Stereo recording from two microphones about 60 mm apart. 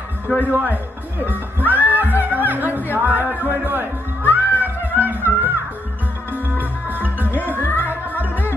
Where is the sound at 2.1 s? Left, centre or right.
Right.